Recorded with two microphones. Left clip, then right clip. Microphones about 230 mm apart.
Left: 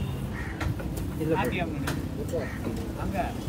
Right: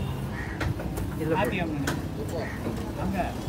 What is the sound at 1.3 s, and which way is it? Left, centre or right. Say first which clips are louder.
Speech: right 1 dB; right.